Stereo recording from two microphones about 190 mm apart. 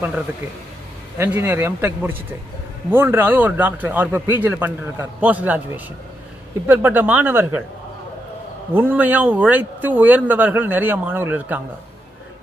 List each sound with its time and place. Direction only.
1.1 s speech: 10° right (ahead or behind)
6.7 s speech: 10° right (ahead or behind)
8.7 s speech: 10° right (ahead or behind)